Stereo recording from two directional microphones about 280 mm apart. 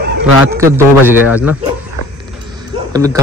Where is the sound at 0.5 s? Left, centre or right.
Centre.